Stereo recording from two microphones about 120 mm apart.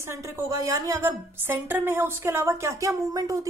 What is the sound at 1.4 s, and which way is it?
A woman's voice, 15° right (ahead or behind).